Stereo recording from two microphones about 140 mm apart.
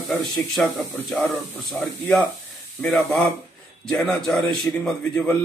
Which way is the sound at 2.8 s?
5° left (ahead or behind).